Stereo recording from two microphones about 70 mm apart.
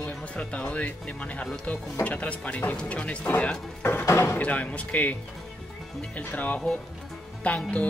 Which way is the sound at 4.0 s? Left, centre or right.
Left.